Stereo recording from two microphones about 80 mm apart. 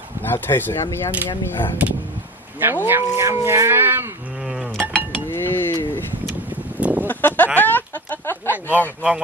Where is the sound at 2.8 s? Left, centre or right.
Right.